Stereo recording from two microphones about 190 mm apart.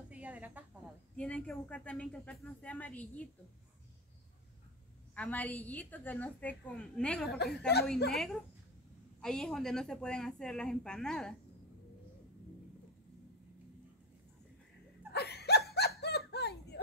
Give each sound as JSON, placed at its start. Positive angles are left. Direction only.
{"t": 0.1, "sound": "a sound", "side_deg": -10}
{"t": 1.1, "sound": "a woman's voice", "side_deg": 5}
{"t": 5.1, "sound": "a woman's voice", "side_deg": 10}
{"t": 7.7, "sound": "a woman's voice", "side_deg": 60}
{"t": 8.1, "sound": "a woman's voice", "side_deg": 0}
{"t": 15.1, "sound": "laughter", "side_deg": 60}
{"t": 16.0, "sound": "a sound", "side_deg": 60}